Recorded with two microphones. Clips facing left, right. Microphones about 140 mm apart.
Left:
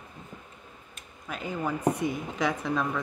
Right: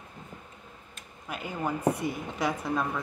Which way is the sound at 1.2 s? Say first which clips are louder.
Left 1 dB; 10° right (ahead or behind).